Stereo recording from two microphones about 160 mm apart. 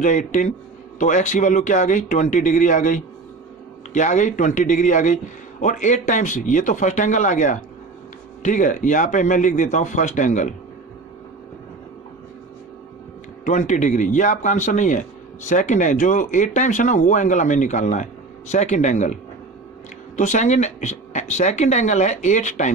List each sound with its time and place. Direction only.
0.0 s speech: 50° left (ahead or behind)
13.4 s speech: 50° left (ahead or behind)
20.2 s speech: 50° left (ahead or behind)